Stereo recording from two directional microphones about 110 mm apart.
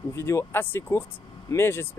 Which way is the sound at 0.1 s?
25° left (ahead or behind).